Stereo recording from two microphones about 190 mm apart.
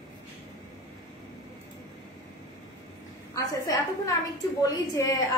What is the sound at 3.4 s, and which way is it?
A woman's voice, 20° left (ahead or behind).